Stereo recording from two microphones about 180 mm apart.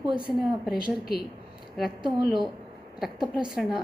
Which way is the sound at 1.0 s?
60° left (ahead or behind).